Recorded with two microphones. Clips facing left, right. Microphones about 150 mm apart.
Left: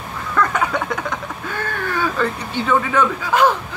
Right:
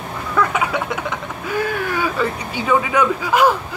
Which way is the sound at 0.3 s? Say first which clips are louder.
Even; 10° right (ahead or behind).